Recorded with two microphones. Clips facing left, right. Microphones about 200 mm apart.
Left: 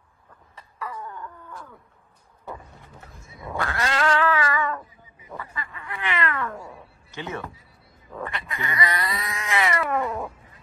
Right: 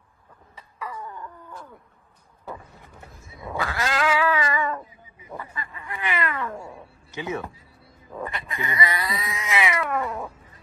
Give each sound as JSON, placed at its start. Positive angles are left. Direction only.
{"t": 0.7, "sound": "wail", "side_deg": -5}
{"t": 3.2, "sound": "cat", "side_deg": -25}
{"t": 3.5, "sound": "cat", "side_deg": 0}
{"t": 4.4, "sound": "a sound", "side_deg": -20}
{"t": 5.9, "sound": "cat", "side_deg": -10}
{"t": 6.5, "sound": "cat", "side_deg": -25}
{"t": 7.2, "sound": "speech", "side_deg": -10}
{"t": 8.1, "sound": "cat", "side_deg": -10}